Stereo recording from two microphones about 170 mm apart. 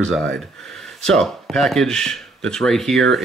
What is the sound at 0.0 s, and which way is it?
Speech, 5° left (ahead or behind).